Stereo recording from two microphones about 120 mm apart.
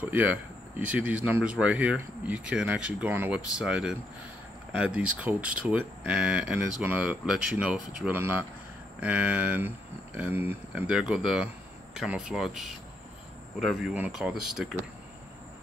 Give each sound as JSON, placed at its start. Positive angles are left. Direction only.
{"t": 0.0, "sound": "speech", "side_deg": -15}
{"t": 8.1, "sound": "speech", "side_deg": -15}
{"t": 13.9, "sound": "speech", "side_deg": -10}